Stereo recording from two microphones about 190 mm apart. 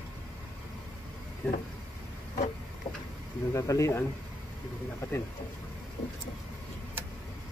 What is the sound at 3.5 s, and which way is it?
Speech, 15° left (ahead or behind).